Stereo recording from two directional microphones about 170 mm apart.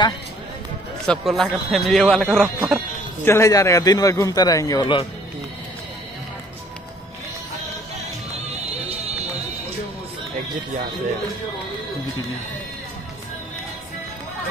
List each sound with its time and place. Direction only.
1.0 s a man's voice: centre (ahead or behind)
2.4 s speech: 10° right (ahead or behind)
3.3 s a man's voice: 15° left (ahead or behind)